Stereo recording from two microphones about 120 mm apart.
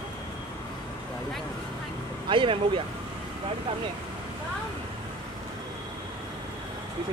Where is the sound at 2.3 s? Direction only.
45° right (ahead or behind).